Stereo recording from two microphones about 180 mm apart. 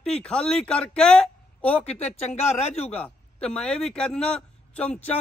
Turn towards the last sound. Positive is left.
turn(degrees=5)  # may be behind; listen again after turning